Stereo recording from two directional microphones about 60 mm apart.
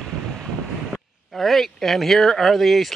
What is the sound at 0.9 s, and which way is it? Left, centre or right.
Speech, centre.